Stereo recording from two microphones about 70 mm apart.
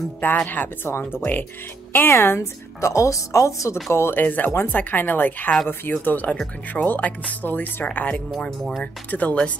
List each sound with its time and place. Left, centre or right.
0.4 s a woman's voice: left
2.9 s a woman's voice: left
3.9 s speech: left
8.4 s speech: centre
9.1 s speech: centre